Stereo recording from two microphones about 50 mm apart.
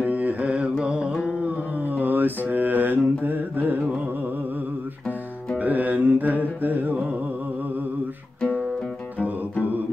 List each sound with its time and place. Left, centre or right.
0.0 s carnatic music: right
0.8 s music: right
1.8 s mantra: right
5.6 s music: right